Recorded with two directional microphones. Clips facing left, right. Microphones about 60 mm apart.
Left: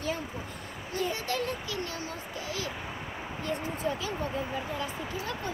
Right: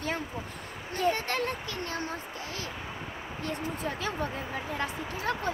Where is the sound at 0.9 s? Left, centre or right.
Right.